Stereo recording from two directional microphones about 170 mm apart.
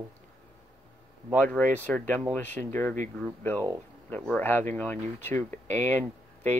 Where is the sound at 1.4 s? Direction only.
10° left (ahead or behind).